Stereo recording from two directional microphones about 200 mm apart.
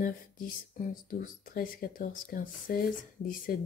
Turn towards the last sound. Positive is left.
turn(degrees=45)  # may be behind; listen again after turning